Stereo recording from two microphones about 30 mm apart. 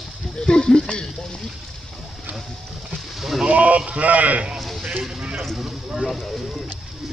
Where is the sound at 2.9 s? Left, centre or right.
Centre.